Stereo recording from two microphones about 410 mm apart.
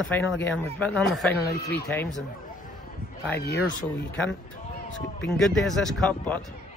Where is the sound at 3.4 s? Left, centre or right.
Left.